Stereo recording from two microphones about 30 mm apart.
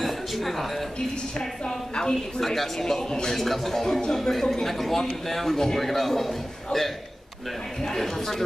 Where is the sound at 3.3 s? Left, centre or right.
Centre.